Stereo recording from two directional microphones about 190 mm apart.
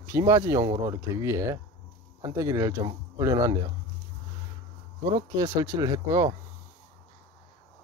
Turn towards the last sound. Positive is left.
turn(degrees=-20)  # may be behind; listen again after turning